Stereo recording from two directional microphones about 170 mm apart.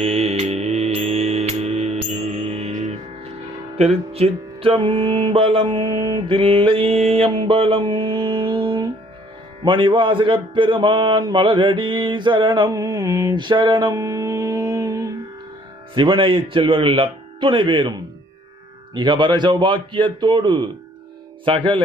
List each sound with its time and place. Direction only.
0.0 s mantra: 35° right (ahead or behind)
2.2 s music: 40° right (ahead or behind)
9.6 s speech: 30° right (ahead or behind)
15.9 s music: 30° right (ahead or behind)
18.9 s speech: 25° right (ahead or behind)
21.5 s music: 30° right (ahead or behind)